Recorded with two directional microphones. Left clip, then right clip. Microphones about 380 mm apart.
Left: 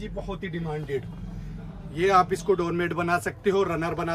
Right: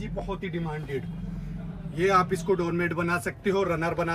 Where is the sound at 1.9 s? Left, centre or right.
Centre.